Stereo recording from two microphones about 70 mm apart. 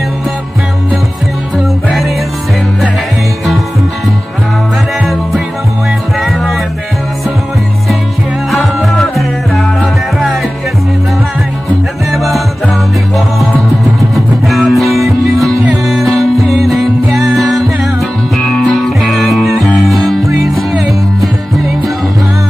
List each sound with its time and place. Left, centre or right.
6.1 s music: centre
8.5 s music: centre
12.1 s music: centre
14.1 s music: centre
14.9 s music: right
15.9 s music: centre